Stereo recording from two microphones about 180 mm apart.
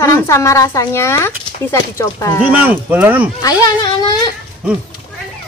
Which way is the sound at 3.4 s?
20° left (ahead or behind).